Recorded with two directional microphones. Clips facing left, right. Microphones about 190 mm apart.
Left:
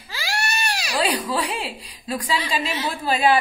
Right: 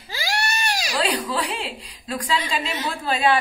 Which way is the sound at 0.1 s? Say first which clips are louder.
Right 1 dB; 35° right (ahead or behind).